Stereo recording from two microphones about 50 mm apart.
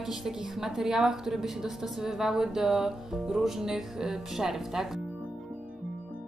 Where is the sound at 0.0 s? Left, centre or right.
Centre.